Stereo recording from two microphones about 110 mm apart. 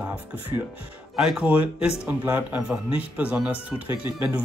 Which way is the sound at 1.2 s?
5° right (ahead or behind).